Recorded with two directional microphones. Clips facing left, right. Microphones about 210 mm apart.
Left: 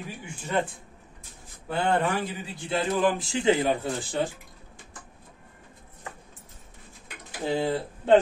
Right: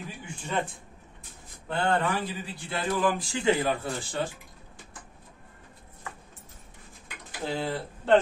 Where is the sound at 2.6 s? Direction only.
20° left (ahead or behind).